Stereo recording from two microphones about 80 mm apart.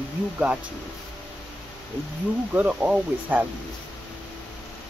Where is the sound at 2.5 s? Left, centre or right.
Centre.